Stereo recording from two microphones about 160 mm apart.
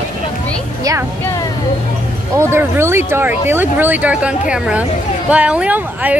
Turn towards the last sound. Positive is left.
turn(degrees=-10)  # may be behind; listen again after turning